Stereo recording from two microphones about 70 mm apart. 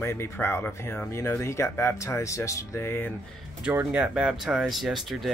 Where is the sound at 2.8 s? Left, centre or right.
Left.